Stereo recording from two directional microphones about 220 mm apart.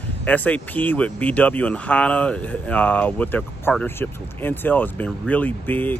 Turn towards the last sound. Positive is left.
turn(degrees=10)  # may be behind; listen again after turning